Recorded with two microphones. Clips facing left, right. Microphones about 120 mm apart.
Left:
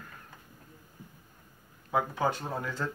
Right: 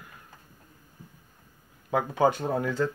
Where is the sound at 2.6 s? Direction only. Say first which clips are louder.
Right 8 dB; 70° right (ahead or behind).